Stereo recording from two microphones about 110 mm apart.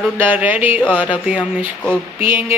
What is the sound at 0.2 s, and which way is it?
Speech, 15° right (ahead or behind).